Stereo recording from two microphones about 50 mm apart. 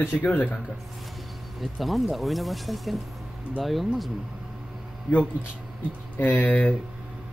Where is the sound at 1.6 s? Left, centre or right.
Centre.